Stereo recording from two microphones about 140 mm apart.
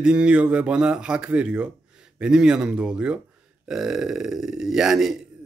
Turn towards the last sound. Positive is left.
turn(degrees=0)  # may be behind; listen again after turning